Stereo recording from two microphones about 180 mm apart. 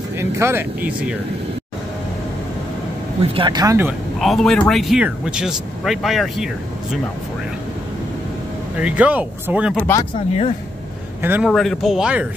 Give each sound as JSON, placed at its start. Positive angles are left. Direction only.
{"t": 0.2, "sound": "speech", "side_deg": -15}
{"t": 3.2, "sound": "speech", "side_deg": -30}
{"t": 4.2, "sound": "speech", "side_deg": 0}
{"t": 8.7, "sound": "speech", "side_deg": -10}
{"t": 9.8, "sound": "speech", "side_deg": 15}
{"t": 11.2, "sound": "speech", "side_deg": -10}
{"t": 11.5, "sound": "speech", "side_deg": 0}